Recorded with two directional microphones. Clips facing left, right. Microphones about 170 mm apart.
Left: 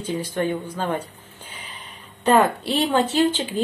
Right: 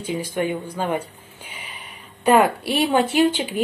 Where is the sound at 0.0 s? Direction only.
10° right (ahead or behind).